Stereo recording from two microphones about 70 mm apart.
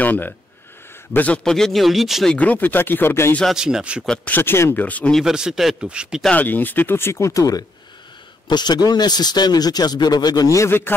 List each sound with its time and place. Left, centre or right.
0.0 s speech: left
1.4 s speech: centre
2.3 s speech: left
3.5 s speech: centre
4.2 s speech: left
5.2 s speech: centre
6.3 s speech: left
8.5 s a man's voice: left
10.7 s speech: left